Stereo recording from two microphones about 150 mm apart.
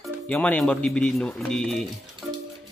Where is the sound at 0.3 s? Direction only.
10° left (ahead or behind).